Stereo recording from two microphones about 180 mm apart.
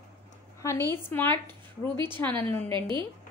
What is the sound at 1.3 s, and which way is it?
Speech, 25° right (ahead or behind).